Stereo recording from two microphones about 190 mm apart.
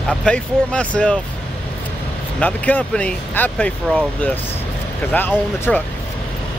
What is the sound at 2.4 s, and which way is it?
Speech, 10° left (ahead or behind).